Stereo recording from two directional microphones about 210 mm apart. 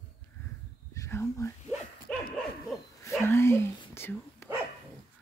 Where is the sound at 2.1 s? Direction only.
5° left (ahead or behind).